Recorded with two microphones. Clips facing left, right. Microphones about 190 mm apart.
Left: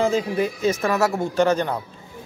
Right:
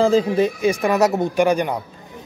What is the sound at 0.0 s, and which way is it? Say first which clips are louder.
Speech: right 5 dB; 30° right (ahead or behind).